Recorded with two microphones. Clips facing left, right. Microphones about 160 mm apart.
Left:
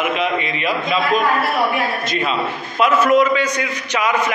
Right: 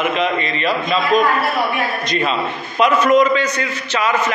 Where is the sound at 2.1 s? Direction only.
5° left (ahead or behind).